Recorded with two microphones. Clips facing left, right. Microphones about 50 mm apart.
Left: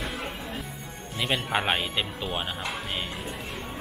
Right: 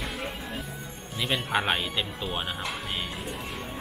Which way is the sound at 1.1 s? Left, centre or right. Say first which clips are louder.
Even; centre.